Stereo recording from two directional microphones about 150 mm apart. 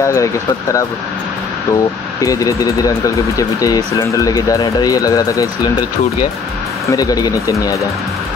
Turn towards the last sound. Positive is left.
turn(degrees=20)  # may be behind; listen again after turning